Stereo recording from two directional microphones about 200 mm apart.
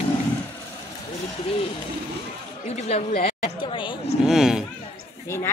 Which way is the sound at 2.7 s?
35° left (ahead or behind).